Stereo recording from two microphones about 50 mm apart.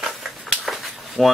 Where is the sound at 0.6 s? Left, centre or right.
Centre.